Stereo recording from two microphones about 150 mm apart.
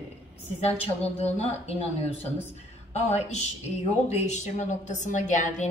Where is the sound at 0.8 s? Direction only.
45° left (ahead or behind).